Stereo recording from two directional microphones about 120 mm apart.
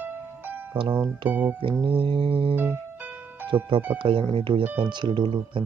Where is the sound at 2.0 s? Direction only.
50° right (ahead or behind).